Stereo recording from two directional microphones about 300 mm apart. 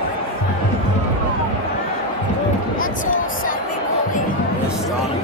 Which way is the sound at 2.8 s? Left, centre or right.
Left.